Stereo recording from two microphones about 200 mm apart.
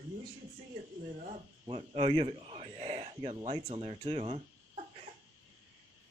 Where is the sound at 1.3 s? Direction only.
30° right (ahead or behind).